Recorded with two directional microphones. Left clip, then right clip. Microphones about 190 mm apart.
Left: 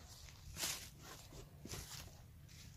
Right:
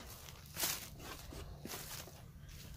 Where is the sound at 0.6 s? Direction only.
15° left (ahead or behind).